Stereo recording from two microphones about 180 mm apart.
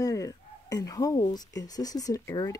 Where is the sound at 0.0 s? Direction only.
20° left (ahead or behind).